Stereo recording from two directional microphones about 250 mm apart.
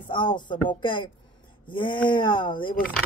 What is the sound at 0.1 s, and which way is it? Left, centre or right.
Speech, centre.